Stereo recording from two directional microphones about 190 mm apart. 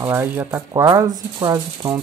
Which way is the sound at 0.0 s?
10° right (ahead or behind).